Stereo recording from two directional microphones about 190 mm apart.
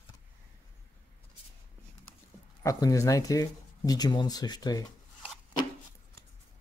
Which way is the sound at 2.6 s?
20° left (ahead or behind).